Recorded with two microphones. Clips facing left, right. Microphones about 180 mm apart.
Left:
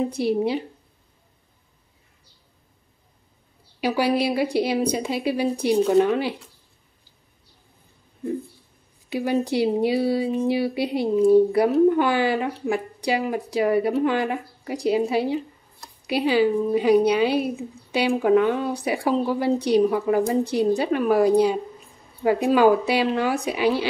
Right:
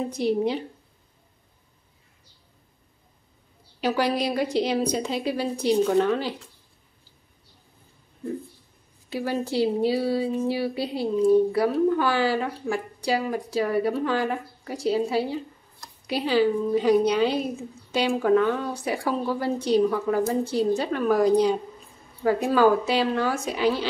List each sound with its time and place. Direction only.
0.1 s speech: 10° left (ahead or behind)
3.8 s speech: 10° left (ahead or behind)
9.1 s speech: 15° left (ahead or behind)